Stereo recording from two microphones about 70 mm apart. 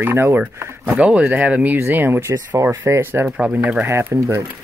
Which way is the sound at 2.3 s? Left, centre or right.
Right.